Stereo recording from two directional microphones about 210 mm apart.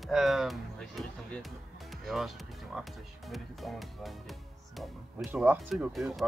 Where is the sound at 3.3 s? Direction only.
Centre (ahead or behind).